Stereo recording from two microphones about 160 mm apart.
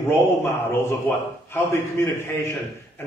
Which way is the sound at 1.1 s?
15° left (ahead or behind).